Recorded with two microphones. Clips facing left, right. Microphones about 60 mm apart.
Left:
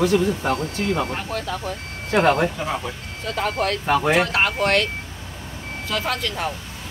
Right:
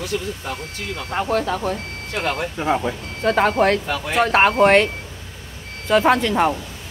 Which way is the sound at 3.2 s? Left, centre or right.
Right.